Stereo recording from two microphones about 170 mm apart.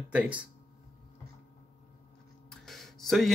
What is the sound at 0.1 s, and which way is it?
Speech, 10° right (ahead or behind).